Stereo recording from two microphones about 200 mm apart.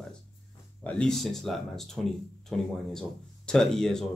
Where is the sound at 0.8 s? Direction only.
5° left (ahead or behind).